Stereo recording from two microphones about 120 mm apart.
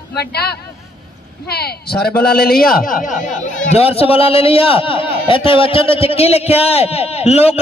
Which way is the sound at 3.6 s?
60° left (ahead or behind).